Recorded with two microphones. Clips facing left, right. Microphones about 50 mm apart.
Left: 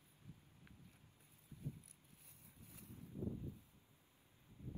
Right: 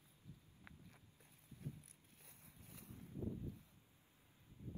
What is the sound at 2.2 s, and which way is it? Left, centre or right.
Vehicle, right.